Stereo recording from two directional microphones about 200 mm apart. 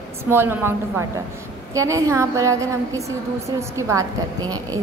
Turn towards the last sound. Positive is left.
turn(degrees=-20)  # may be behind; listen again after turning